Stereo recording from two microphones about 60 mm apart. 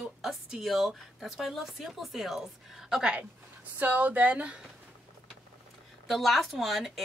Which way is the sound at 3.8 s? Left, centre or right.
Right.